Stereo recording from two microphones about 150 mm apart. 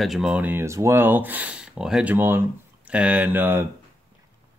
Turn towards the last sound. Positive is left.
turn(degrees=-15)  # may be behind; listen again after turning